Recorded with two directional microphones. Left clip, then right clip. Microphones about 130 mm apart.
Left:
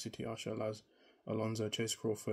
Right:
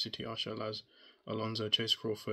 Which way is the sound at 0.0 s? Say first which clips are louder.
Right 5 dB; 20° left (ahead or behind).